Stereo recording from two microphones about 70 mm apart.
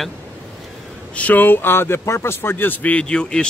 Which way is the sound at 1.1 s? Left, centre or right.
Left.